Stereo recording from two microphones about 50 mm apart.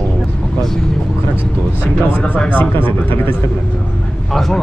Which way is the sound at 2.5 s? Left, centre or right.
Left.